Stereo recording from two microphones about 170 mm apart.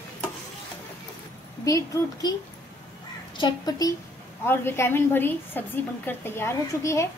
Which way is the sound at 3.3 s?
25° left (ahead or behind).